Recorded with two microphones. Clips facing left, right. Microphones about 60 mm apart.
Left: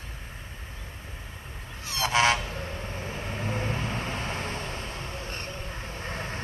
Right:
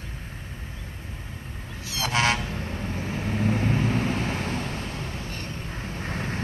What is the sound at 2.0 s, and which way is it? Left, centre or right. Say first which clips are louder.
Vehicle: left 1 dB; centre.